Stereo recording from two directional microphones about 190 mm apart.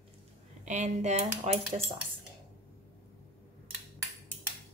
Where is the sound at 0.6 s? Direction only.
40° right (ahead or behind).